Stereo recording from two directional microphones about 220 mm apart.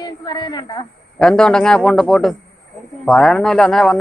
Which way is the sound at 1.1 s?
5° left (ahead or behind).